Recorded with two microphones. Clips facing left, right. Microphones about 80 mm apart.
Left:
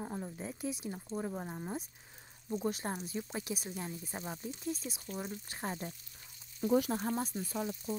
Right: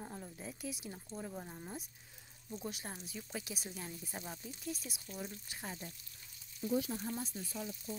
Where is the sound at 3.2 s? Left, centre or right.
Left.